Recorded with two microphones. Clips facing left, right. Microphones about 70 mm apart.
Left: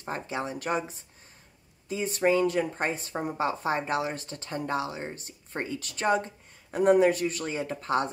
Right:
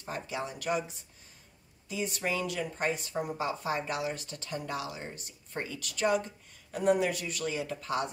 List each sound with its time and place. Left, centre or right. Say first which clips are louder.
0.0 s speech: left 4 dB; left